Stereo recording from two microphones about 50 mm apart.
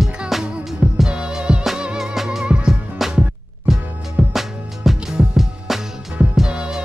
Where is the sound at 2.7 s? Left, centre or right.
Centre.